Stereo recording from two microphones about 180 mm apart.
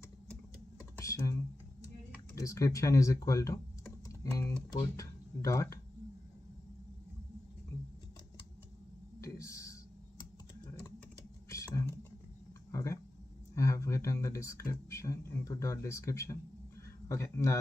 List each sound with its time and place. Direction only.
0.9 s computer keyboard: 15° left (ahead or behind)
2.3 s speech: 20° left (ahead or behind)
9.2 s a sound: 15° left (ahead or behind)
11.4 s typing: 15° left (ahead or behind)
12.7 s a sound: 15° left (ahead or behind)
17.1 s speech: 15° left (ahead or behind)